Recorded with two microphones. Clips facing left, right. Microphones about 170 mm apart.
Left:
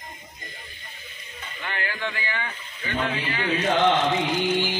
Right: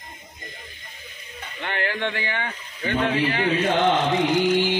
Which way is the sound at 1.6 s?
60° right (ahead or behind).